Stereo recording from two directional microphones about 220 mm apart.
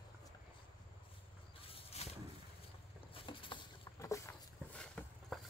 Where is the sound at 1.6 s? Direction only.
25° left (ahead or behind).